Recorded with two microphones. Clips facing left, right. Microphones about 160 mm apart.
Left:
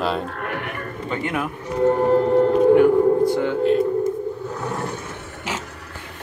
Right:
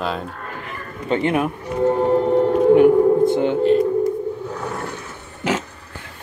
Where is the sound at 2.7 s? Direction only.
20° right (ahead or behind).